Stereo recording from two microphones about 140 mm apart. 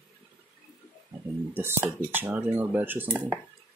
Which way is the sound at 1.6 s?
15° right (ahead or behind).